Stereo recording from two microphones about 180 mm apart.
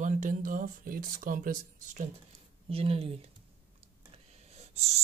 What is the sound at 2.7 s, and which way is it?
Speech, 30° right (ahead or behind).